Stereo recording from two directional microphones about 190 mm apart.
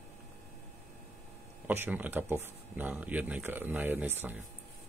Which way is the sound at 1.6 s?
10° right (ahead or behind).